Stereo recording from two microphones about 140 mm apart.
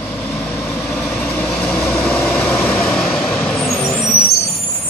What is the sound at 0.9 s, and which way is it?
Vehicle, 5° left (ahead or behind).